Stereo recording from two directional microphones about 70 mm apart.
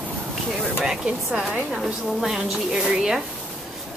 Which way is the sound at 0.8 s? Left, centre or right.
Centre.